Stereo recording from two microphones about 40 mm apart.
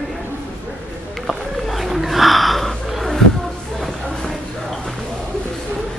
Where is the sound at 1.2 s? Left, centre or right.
Centre.